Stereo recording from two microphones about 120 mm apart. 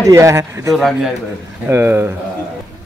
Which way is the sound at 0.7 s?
Centre (ahead or behind).